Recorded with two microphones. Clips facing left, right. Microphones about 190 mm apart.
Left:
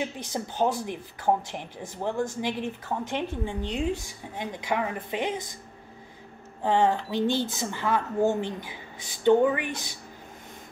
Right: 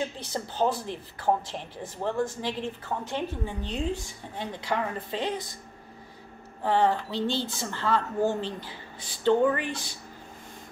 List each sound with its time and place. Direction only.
0.0 s speech: 15° left (ahead or behind)
6.6 s speech: 15° left (ahead or behind)